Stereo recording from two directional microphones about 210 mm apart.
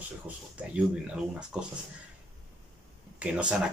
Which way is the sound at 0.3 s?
5° right (ahead or behind).